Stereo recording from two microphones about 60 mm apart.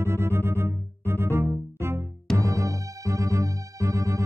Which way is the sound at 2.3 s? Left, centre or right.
Right.